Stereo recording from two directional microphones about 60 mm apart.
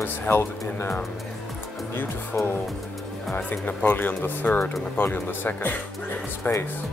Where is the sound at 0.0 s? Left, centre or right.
Left.